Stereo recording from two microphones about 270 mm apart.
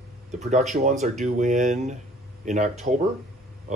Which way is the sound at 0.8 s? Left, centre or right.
Right.